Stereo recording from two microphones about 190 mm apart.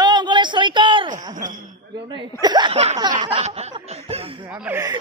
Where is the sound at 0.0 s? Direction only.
25° right (ahead or behind).